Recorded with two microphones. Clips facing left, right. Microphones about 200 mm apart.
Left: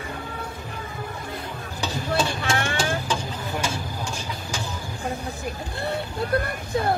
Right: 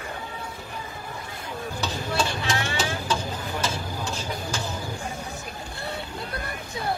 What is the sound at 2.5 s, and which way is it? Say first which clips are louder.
Vehicle: left 5 dB; 55° left (ahead or behind).